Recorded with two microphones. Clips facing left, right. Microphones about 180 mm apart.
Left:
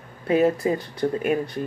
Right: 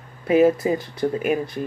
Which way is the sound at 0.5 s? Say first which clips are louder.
Right 1 dB; 25° right (ahead or behind).